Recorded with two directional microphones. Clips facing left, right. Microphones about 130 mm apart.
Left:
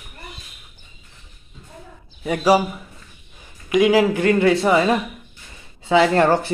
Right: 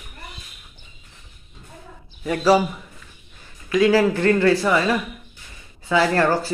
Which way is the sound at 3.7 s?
15° left (ahead or behind).